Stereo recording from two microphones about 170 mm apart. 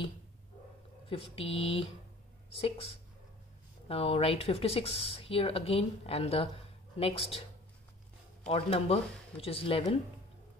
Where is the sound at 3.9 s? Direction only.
35° left (ahead or behind).